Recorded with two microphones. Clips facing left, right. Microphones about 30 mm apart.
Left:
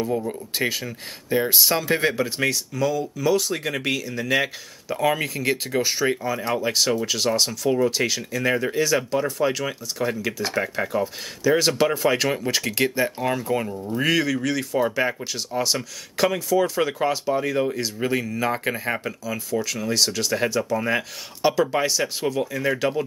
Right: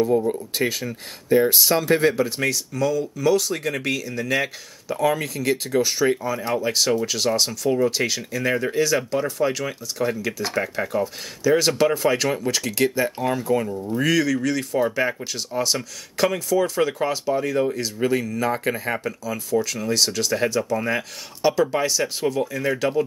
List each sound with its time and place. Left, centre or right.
0.6 s speech: centre
12.4 s speech: centre
13.7 s speech: centre
13.9 s speech: centre